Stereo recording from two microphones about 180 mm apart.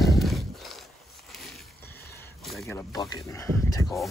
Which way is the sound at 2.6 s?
15° left (ahead or behind).